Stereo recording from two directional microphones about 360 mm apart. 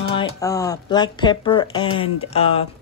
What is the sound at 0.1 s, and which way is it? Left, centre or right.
Speech, centre.